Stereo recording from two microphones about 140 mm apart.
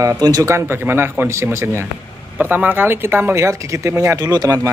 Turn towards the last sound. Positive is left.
turn(degrees=-25)  # may be behind; listen again after turning